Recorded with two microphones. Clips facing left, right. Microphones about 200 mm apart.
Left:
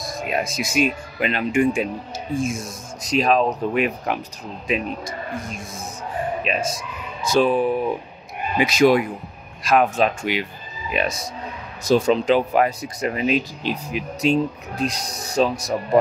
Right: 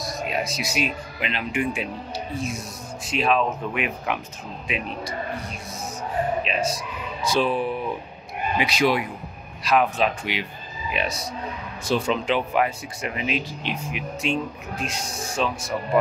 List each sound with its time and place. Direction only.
0.0 s speech: 50° left (ahead or behind)
7.2 s speech: 45° left (ahead or behind)